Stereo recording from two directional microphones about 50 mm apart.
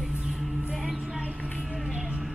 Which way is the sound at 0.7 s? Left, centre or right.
Centre.